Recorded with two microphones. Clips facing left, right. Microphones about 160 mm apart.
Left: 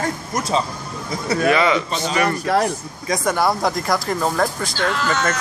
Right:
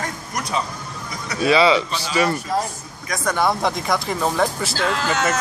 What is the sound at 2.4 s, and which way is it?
Speech, 70° left (ahead or behind).